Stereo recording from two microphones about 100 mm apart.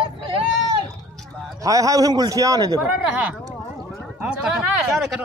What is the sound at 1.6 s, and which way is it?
A man's voice, 35° right (ahead or behind).